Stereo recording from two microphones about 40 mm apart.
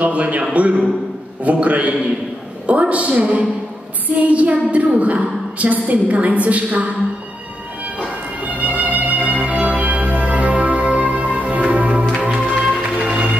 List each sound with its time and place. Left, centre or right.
0.0 s a man's voice: right
8.4 s music: right